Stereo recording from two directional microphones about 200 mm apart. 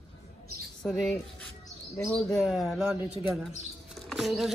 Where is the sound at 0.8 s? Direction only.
5° left (ahead or behind).